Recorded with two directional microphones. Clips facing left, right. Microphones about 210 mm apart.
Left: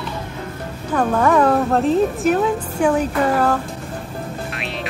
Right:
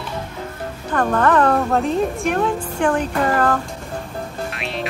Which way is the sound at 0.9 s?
10° left (ahead or behind).